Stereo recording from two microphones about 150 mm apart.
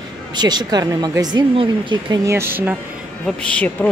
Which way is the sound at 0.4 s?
30° right (ahead or behind).